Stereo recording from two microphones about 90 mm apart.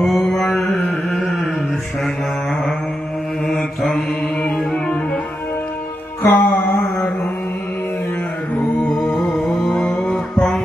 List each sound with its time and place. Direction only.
0.0 s mantra: 5° left (ahead or behind)
3.4 s mantra: 5° left (ahead or behind)
6.2 s mantra: 15° left (ahead or behind)
8.7 s music: 15° left (ahead or behind)